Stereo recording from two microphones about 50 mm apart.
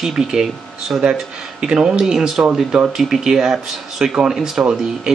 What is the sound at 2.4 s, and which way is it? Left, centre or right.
Speech, right.